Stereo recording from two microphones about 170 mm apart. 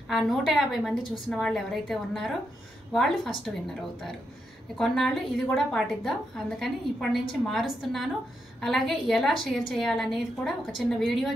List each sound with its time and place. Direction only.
0.1 s a woman's voice: centre (ahead or behind)
4.7 s a woman's voice: centre (ahead or behind)